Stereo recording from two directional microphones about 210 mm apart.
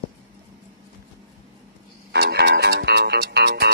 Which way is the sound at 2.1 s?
50° right (ahead or behind).